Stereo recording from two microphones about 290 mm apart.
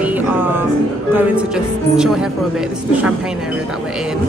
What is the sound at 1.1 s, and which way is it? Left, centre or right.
Speech, centre.